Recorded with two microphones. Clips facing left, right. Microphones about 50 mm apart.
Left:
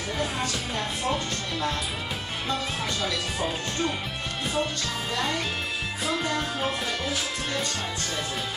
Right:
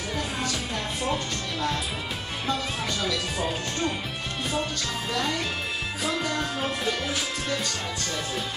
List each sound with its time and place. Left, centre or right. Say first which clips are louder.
0.2 s music: left 2 dB; centre
2.4 s speech: right 1 dB; centre
6.3 s speech: even; centre